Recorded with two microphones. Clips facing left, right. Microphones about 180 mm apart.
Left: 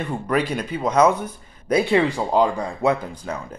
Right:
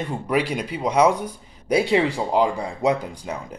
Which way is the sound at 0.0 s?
10° right (ahead or behind).